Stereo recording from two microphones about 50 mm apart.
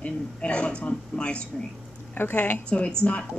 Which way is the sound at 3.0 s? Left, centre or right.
Left.